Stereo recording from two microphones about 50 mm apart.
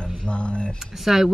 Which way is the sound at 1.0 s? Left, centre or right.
Centre.